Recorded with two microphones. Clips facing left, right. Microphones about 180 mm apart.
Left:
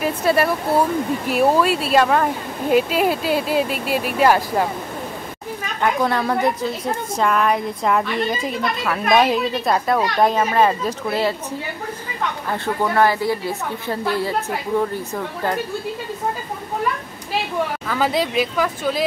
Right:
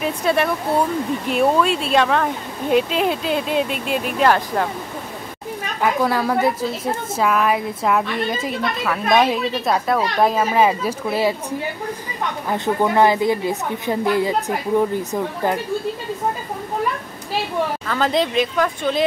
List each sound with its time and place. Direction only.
0.0 s a woman's voice: 5° left (ahead or behind)
5.8 s a woman's voice: 5° right (ahead or behind)
12.4 s a woman's voice: 15° right (ahead or behind)
17.8 s a woman's voice: 5° left (ahead or behind)